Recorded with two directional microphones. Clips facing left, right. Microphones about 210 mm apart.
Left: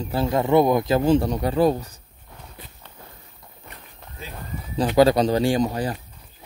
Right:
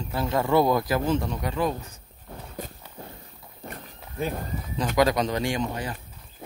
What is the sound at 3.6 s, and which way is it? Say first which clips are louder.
Walk: right 6 dB; 50° right (ahead or behind).